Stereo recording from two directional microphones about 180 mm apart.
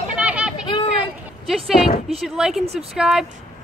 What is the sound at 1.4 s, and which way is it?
Speech, centre (ahead or behind).